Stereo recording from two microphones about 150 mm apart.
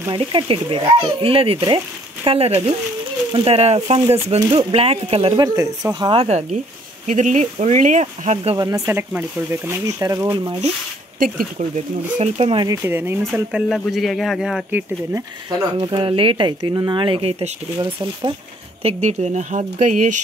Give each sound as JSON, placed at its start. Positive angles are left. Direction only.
{"t": 0.2, "sound": "speech", "side_deg": -35}
{"t": 4.4, "sound": "speech", "side_deg": -30}
{"t": 5.4, "sound": "speech", "side_deg": -25}
{"t": 7.1, "sound": "speech", "side_deg": -55}
{"t": 8.5, "sound": "speech", "side_deg": -20}
{"t": 11.1, "sound": "speech", "side_deg": -70}
{"t": 12.2, "sound": "speech", "side_deg": -40}
{"t": 12.6, "sound": "speech", "side_deg": -20}
{"t": 13.3, "sound": "speech", "side_deg": 0}
{"t": 15.8, "sound": "speech", "side_deg": -35}
{"t": 18.8, "sound": "speech", "side_deg": -45}